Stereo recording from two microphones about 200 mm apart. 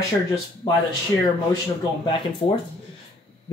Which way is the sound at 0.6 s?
20° left (ahead or behind).